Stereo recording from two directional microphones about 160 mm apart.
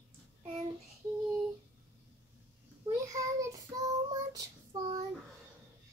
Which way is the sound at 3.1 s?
20° right (ahead or behind).